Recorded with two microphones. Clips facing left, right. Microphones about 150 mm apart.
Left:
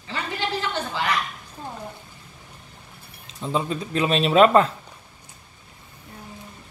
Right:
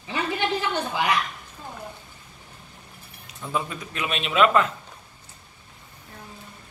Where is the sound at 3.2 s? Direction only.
25° left (ahead or behind).